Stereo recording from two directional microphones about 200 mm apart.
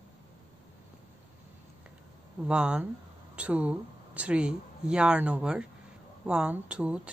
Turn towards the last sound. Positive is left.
turn(degrees=-5)  # may be behind; listen again after turning